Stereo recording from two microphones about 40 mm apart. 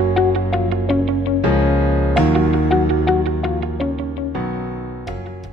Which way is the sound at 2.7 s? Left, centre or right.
Centre.